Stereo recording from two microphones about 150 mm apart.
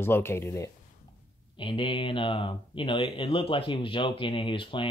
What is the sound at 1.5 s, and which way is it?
Speech, 35° left (ahead or behind).